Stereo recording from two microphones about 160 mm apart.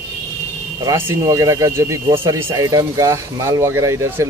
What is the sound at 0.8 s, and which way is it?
Speech, 20° right (ahead or behind).